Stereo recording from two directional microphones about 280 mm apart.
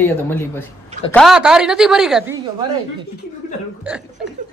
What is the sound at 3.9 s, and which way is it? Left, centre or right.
Speech, centre.